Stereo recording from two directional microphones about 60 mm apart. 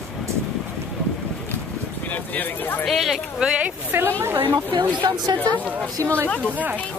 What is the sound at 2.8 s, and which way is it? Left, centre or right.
Speech, centre.